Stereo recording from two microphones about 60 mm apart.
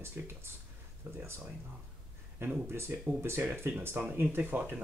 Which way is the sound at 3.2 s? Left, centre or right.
Right.